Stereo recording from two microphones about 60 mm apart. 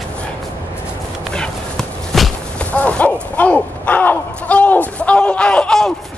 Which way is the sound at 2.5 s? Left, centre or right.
Left.